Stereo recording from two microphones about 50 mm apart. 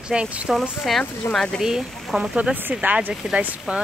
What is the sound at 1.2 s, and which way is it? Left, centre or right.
Speech, left.